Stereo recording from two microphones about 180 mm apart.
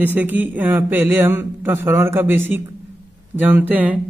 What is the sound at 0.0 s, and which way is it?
Speech, 10° right (ahead or behind).